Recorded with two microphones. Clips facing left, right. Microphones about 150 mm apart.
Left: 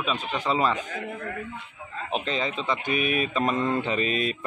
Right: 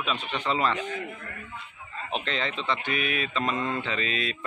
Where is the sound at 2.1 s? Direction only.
10° left (ahead or behind).